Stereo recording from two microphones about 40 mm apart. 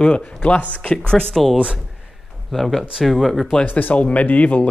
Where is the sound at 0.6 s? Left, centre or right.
Left.